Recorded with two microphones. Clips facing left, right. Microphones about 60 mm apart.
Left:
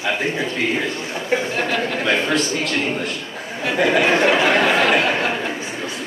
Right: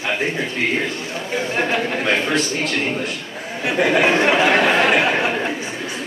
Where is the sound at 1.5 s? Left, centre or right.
Centre.